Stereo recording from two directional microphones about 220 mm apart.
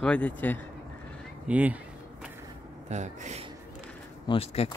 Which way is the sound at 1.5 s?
5° right (ahead or behind).